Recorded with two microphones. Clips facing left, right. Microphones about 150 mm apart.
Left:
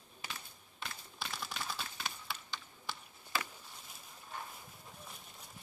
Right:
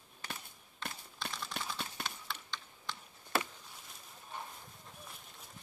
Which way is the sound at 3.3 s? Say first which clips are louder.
Right 4 dB; 65° right (ahead or behind).